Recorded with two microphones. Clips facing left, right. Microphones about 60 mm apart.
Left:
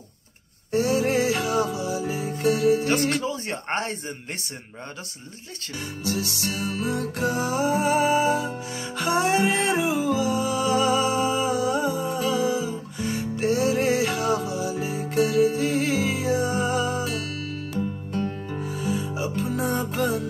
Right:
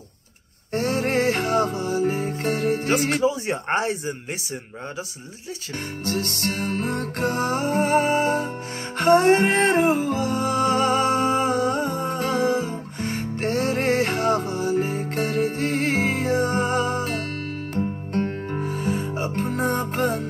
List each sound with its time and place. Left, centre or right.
0.7 s music: right
3.2 s speech: centre
6.0 s music: right